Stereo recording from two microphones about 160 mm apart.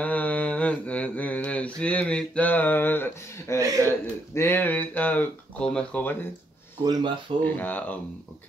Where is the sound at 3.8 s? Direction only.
15° left (ahead or behind).